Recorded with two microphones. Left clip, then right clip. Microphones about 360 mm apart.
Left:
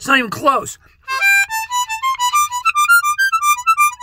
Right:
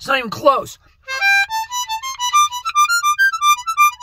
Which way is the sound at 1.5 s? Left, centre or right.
Left.